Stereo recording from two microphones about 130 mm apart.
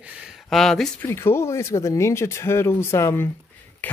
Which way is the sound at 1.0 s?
20° left (ahead or behind).